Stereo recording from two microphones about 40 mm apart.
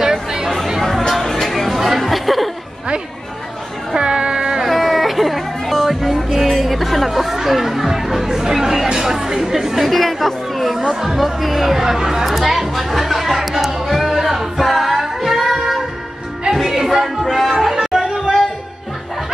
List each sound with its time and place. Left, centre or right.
0.0 s chatter: centre
0.8 s chatter: centre
3.9 s a sound: centre
4.6 s music: centre
8.9 s chatter: centre
9.8 s chatter: centre
10.9 s music: centre